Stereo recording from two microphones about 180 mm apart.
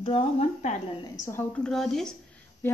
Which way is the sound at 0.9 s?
20° left (ahead or behind).